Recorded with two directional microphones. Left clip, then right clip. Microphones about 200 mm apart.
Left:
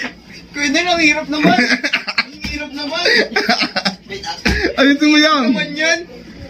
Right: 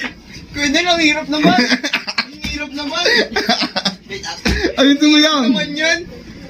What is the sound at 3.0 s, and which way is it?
Cough, centre (ahead or behind).